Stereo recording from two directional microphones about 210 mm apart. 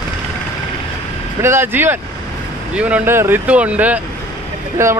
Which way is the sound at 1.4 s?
10° right (ahead or behind).